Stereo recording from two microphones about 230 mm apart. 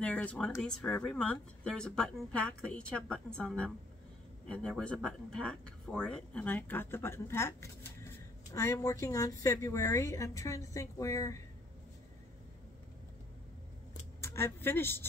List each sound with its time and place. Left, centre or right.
0.0 s speech: centre
14.2 s speech: centre